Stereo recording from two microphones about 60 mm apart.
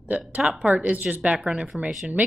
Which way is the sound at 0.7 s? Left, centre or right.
Right.